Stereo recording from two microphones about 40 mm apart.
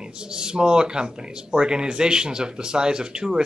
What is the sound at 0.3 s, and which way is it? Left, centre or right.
Speech, centre.